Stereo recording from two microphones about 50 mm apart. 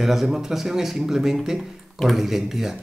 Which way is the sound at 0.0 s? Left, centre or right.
Centre.